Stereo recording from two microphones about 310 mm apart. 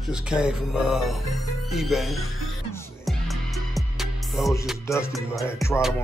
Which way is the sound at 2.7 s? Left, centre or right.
Centre.